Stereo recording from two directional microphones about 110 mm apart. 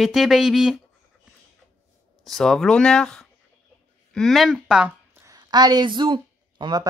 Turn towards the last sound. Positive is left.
turn(degrees=-40)  # may be behind; listen again after turning